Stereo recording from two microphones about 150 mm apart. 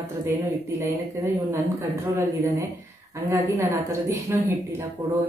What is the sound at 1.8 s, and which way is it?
A woman's voice, 15° right (ahead or behind).